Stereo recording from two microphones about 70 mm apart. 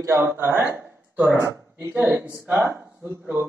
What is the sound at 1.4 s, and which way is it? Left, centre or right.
Speech, right.